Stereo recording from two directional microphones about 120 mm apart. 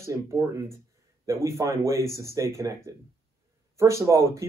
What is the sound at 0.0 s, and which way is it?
Speech, 25° right (ahead or behind).